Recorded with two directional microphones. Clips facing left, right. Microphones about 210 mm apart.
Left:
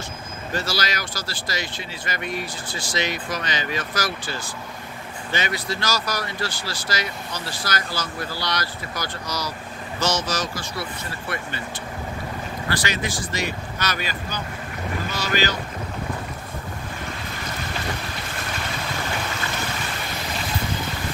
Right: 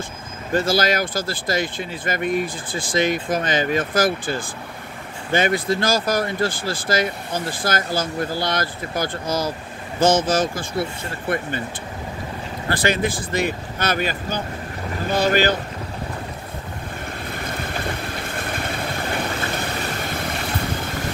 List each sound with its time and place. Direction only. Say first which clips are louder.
0.5 s speech: right 8 dB; 50° right (ahead or behind)
12.6 s speech: right 7 dB; 50° right (ahead or behind)
17.7 s boat: right 3 dB; 55° right (ahead or behind)